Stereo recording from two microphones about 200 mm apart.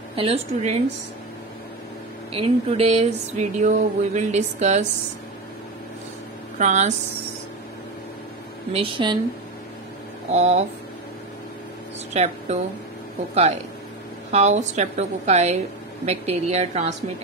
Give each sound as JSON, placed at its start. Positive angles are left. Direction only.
{"t": 0.1, "sound": "a woman's voice", "side_deg": -30}
{"t": 2.3, "sound": "speech", "side_deg": -30}
{"t": 6.6, "sound": "speech", "side_deg": -35}
{"t": 8.7, "sound": "a woman's voice", "side_deg": -25}
{"t": 10.3, "sound": "speech", "side_deg": -35}
{"t": 12.1, "sound": "speech", "side_deg": -35}